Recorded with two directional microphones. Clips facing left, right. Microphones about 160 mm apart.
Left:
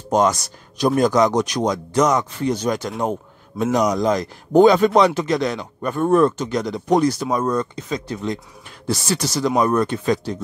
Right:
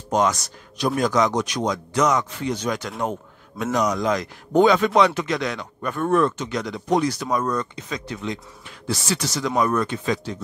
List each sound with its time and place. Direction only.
0.1 s a man's voice: 40° left (ahead or behind)
7.3 s a man's voice: 30° left (ahead or behind)